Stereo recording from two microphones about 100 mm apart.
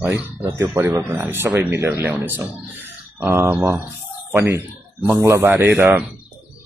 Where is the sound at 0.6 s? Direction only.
30° right (ahead or behind); by 6.0 s 15° right (ahead or behind).